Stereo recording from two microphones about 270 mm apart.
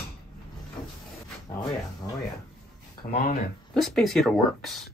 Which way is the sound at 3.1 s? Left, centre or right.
Left.